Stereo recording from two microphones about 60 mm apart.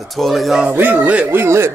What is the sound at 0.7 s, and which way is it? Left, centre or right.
Speech, right.